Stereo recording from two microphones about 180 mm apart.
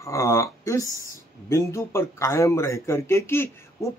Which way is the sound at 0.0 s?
15° left (ahead or behind).